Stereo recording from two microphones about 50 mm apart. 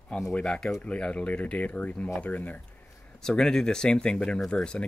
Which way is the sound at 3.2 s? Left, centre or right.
Centre.